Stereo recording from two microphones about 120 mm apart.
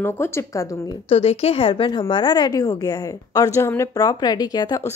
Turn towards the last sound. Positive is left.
turn(degrees=30)  # may be behind; listen again after turning